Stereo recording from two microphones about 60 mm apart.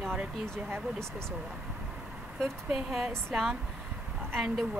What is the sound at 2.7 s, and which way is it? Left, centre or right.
Speech, centre.